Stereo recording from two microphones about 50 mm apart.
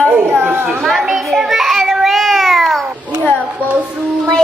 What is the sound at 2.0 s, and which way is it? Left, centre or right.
Cat, centre.